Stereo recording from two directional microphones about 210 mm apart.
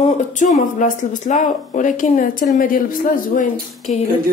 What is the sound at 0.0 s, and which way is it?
Speech, 35° left (ahead or behind).